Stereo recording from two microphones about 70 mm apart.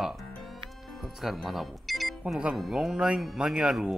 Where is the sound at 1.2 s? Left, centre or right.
Centre.